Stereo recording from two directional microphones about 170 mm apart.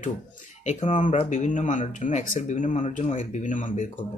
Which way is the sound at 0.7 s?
45° left (ahead or behind).